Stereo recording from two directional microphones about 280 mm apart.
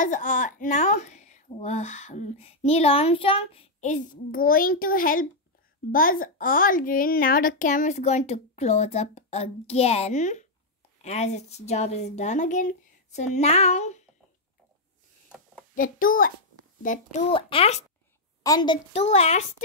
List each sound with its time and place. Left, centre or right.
0.0 s speech: left
15.7 s a child's voice: left